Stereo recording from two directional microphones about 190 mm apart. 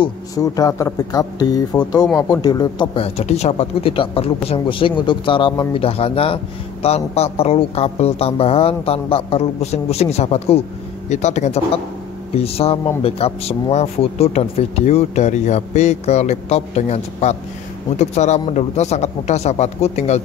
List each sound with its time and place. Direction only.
0.0 s speech: 20° left (ahead or behind); by 20.2 s 35° left (ahead or behind)